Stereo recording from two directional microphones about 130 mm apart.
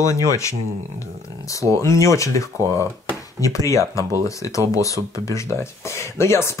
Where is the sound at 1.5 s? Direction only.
25° left (ahead or behind).